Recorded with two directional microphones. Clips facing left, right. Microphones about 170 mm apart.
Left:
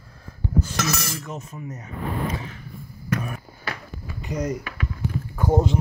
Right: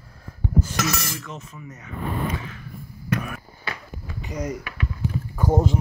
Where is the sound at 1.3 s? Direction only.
45° left (ahead or behind).